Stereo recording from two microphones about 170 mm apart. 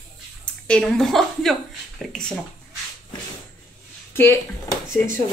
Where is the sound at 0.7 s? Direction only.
5° left (ahead or behind).